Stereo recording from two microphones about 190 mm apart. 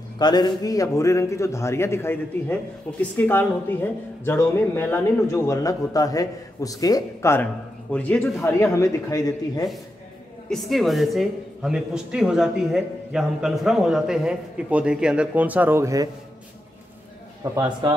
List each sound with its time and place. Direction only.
0.2 s a man's voice: 20° left (ahead or behind)
10.5 s speech: centre (ahead or behind); by 16.1 s 15° right (ahead or behind)
17.4 s a man's voice: 10° right (ahead or behind)